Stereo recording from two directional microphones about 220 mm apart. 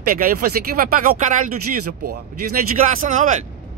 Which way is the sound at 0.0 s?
40° right (ahead or behind).